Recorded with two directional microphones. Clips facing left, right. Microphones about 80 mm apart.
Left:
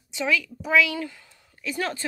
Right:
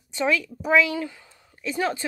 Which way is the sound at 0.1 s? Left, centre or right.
Right.